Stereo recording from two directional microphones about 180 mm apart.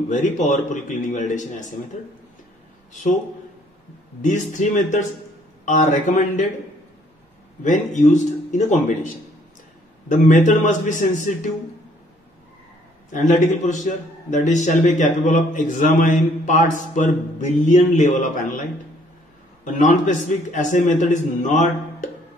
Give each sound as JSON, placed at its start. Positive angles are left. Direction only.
{"t": 0.1, "sound": "a man's voice", "side_deg": 45}
{"t": 2.9, "sound": "speech", "side_deg": 45}
{"t": 4.2, "sound": "a man's voice", "side_deg": 45}
{"t": 7.6, "sound": "a man's voice", "side_deg": 45}
{"t": 13.1, "sound": "a man's voice", "side_deg": 45}
{"t": 19.6, "sound": "a man's voice", "side_deg": 45}